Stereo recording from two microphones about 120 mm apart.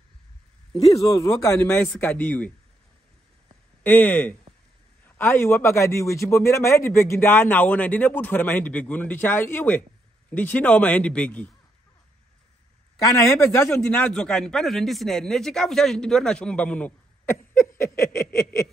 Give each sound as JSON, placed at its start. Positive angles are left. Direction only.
{"t": 0.7, "sound": "speech", "side_deg": 30}
{"t": 3.8, "sound": "a man's voice", "side_deg": 15}
{"t": 13.0, "sound": "speech", "side_deg": 25}
{"t": 13.8, "sound": "speech", "side_deg": 10}